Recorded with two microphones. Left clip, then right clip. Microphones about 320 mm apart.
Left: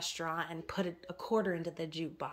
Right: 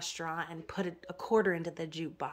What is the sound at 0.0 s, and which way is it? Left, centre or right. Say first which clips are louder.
Speech: even; centre.